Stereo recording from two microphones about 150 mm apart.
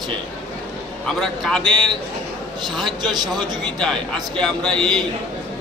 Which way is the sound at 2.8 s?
30° right (ahead or behind).